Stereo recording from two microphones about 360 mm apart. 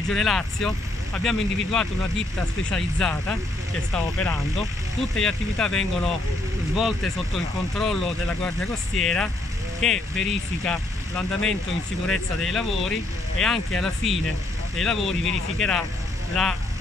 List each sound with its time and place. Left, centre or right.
0.1 s speech: centre
7.3 s speech: centre